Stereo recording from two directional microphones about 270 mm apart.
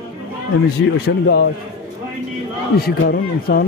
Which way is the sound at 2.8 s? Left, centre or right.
Left.